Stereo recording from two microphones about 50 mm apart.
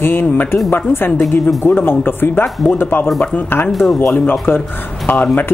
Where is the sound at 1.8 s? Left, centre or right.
Left.